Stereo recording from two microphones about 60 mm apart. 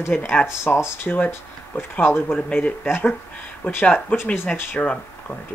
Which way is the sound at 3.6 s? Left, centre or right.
Left.